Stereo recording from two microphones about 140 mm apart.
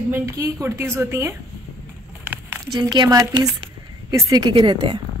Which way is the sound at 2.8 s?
30° right (ahead or behind).